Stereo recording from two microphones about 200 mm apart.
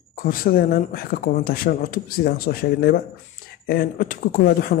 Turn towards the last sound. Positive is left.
turn(degrees=45)  # may be behind; listen again after turning